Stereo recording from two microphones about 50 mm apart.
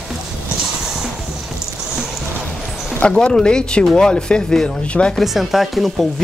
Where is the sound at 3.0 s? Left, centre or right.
Centre.